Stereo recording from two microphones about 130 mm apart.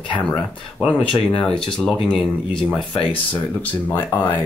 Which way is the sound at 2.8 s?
40° left (ahead or behind).